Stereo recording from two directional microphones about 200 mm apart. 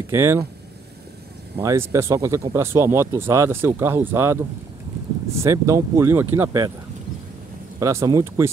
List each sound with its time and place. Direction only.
0.1 s speech: 10° right (ahead or behind)
1.6 s speech: 15° right (ahead or behind)
7.8 s speech: 15° right (ahead or behind)